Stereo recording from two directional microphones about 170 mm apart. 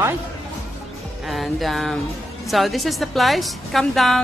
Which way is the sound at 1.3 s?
Centre (ahead or behind).